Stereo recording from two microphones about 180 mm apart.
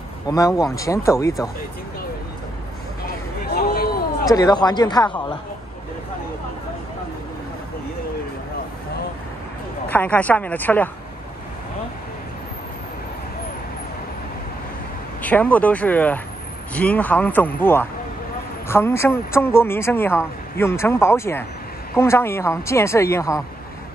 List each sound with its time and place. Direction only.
0.3 s speech: 20° left (ahead or behind)
3.4 s a sound: 55° left (ahead or behind)
4.3 s speech: 20° left (ahead or behind)
9.8 s speech: 10° left (ahead or behind)
15.2 s speech: 10° left (ahead or behind)